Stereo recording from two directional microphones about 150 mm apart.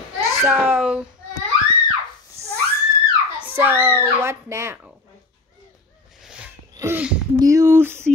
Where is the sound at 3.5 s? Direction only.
15° right (ahead or behind).